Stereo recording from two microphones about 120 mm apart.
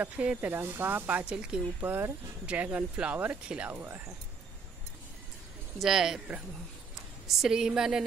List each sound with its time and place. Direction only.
0.0 s speech: 10° right (ahead or behind)
1.8 s speech: 20° right (ahead or behind)
5.8 s a woman's voice: 5° right (ahead or behind)